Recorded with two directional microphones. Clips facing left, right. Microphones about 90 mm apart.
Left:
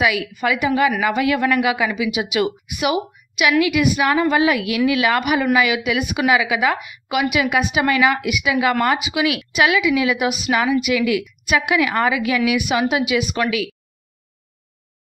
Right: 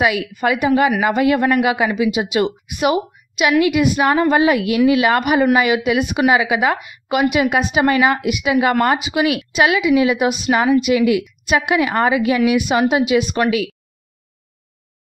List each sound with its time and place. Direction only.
0.0 s a woman's voice: 35° right (ahead or behind)